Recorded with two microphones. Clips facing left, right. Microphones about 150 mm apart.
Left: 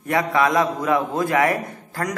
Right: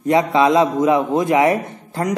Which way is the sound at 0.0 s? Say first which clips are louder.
Right 5 dB; 20° right (ahead or behind).